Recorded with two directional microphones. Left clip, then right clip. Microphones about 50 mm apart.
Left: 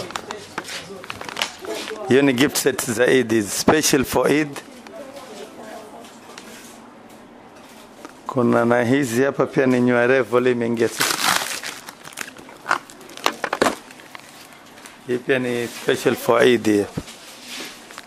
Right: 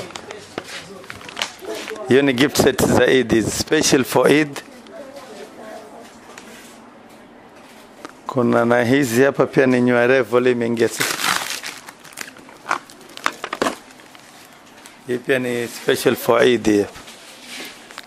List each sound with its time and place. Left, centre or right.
0.0 s a sound: right
1.3 s a sound: left
2.0 s speech: centre
4.3 s a man's voice: centre
8.0 s a man's voice: centre
11.0 s crumpling: left
11.3 s biting: centre
15.0 s speech: right
15.9 s speech: right
16.2 s speech: centre
16.4 s speech: centre